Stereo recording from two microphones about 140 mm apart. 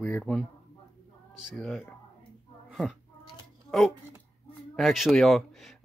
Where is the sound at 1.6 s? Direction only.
5° left (ahead or behind).